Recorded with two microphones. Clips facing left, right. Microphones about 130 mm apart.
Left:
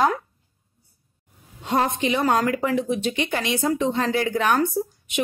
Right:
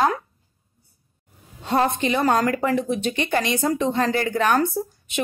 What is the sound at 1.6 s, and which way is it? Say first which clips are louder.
A woman's voice: right 1 dB; 10° left (ahead or behind).